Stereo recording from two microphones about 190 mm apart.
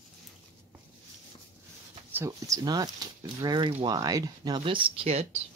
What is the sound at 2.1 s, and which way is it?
Speech, 15° right (ahead or behind).